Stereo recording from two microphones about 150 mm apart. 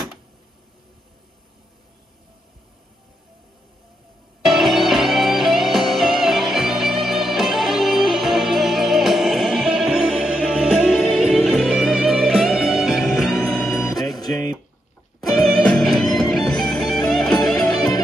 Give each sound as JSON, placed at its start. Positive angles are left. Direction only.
{"t": 4.5, "sound": "music", "side_deg": 0}
{"t": 15.3, "sound": "music", "side_deg": 0}
{"t": 17.6, "sound": "music", "side_deg": 25}